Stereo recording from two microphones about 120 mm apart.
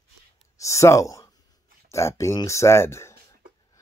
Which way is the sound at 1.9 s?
25° left (ahead or behind).